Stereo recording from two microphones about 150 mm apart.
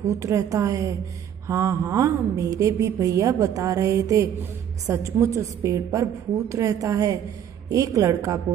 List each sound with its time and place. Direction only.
0.0 s a woman's voice: 20° right (ahead or behind)